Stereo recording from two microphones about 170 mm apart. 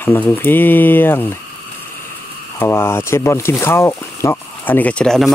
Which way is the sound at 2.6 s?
15° left (ahead or behind).